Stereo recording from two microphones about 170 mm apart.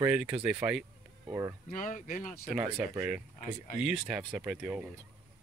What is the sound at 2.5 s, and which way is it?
Speech, 5° right (ahead or behind).